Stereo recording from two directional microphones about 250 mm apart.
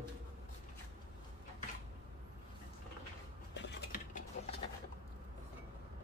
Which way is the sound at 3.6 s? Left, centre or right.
Left.